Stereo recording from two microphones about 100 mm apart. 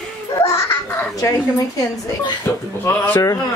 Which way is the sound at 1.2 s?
35° left (ahead or behind).